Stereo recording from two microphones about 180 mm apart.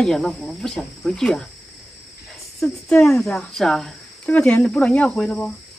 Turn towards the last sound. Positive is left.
turn(degrees=5)  # may be behind; listen again after turning